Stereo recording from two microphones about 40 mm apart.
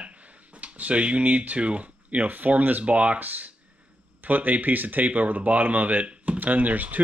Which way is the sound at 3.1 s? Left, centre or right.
Right.